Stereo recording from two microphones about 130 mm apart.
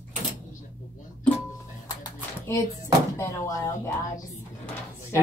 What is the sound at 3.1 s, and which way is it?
Speech, 20° left (ahead or behind).